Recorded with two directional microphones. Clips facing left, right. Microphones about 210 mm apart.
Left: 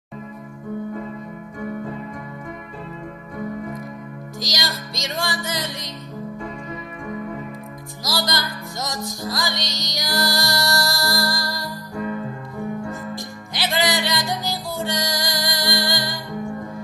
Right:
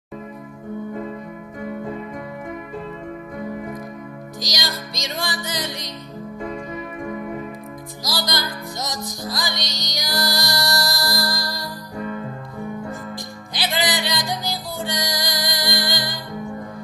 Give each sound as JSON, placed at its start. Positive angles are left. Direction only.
{"t": 4.4, "sound": "music", "side_deg": -15}
{"t": 8.1, "sound": "music", "side_deg": -15}
{"t": 13.1, "sound": "music", "side_deg": -15}